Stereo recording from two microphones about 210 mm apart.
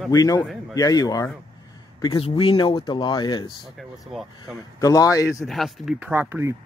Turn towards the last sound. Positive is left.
turn(degrees=-10)  # may be behind; listen again after turning